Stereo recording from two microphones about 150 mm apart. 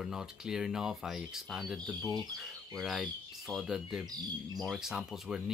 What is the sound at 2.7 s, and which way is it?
Speech, centre (ahead or behind).